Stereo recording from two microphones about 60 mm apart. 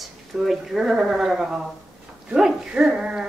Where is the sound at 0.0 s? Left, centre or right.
Centre.